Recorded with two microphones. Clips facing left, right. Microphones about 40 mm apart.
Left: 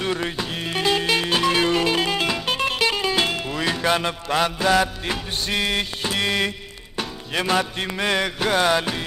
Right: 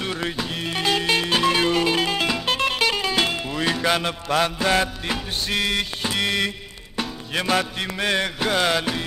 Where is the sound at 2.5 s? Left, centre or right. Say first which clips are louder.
Right 1 dB; centre.